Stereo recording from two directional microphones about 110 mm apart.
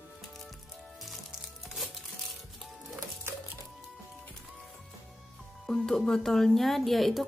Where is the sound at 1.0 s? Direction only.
Centre (ahead or behind).